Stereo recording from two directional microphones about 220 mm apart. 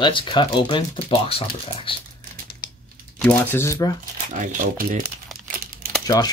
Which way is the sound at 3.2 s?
10° left (ahead or behind).